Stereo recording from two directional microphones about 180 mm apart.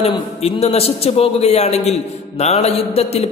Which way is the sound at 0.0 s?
35° left (ahead or behind).